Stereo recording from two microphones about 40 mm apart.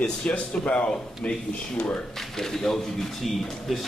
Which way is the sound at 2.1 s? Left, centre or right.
Centre.